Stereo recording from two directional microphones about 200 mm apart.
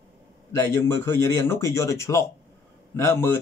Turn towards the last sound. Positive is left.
turn(degrees=10)  # may be behind; listen again after turning